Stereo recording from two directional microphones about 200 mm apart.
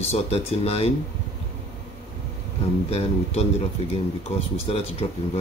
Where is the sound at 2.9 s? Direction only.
30° left (ahead or behind).